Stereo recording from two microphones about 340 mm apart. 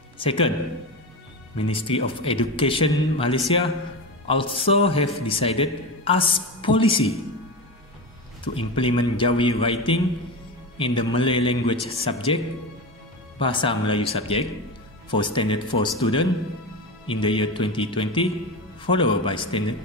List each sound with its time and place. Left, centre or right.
0.2 s a man's voice: centre
1.6 s a man's voice: centre
8.5 s a man's voice: centre
13.4 s a man's voice: centre